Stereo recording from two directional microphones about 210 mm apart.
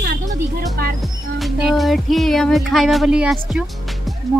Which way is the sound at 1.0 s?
Centre (ahead or behind).